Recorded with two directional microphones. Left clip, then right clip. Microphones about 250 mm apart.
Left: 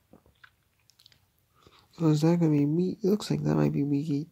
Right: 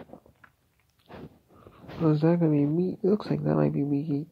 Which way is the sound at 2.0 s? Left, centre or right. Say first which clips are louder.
Right 1 dB; left.